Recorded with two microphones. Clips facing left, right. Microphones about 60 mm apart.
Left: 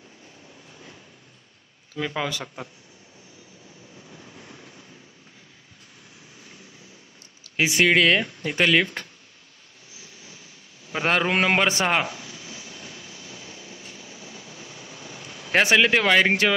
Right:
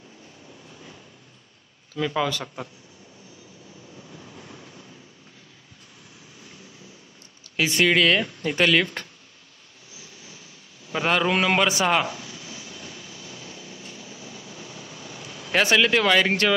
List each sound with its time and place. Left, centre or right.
0.7 s a sound: centre
2.0 s speech: left
4.1 s vehicle: centre
7.6 s speech: centre
11.1 s a man's voice: left
12.1 s a sound: centre
12.7 s train: centre
15.5 s speech: left